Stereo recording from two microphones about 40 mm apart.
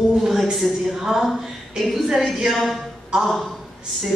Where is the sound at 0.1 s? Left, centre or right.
Centre.